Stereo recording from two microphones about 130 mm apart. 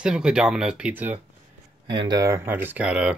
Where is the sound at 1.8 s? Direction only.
35° right (ahead or behind); by 3.1 s 5° right (ahead or behind).